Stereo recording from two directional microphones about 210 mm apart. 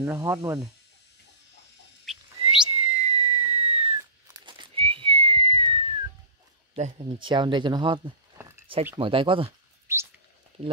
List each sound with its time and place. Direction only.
0.0 s speech: 15° right (ahead or behind)
2.1 s bird: centre (ahead or behind)
2.4 s a sound: 75° right (ahead or behind)
2.9 s whistle: 30° right (ahead or behind)
4.3 s whistling: 20° right (ahead or behind)
6.7 s speech: 30° right (ahead or behind)
8.4 s a sound: 10° right (ahead or behind)
8.9 s speech: 25° right (ahead or behind)
9.9 s a sound: 10° right (ahead or behind)